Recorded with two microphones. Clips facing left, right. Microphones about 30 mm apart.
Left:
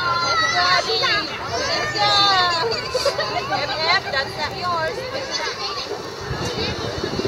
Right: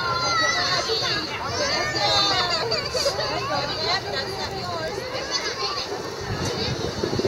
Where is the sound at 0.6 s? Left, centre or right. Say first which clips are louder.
Left 5 dB; left.